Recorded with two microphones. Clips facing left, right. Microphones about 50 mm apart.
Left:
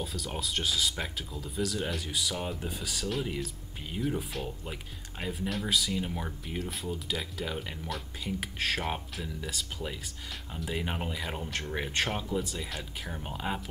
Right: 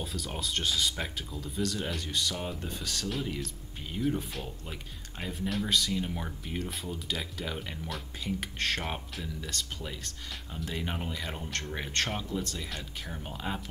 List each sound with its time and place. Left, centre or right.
0.0 s speech: centre